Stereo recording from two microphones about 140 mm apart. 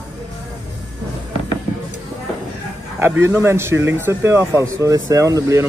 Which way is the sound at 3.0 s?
20° right (ahead or behind).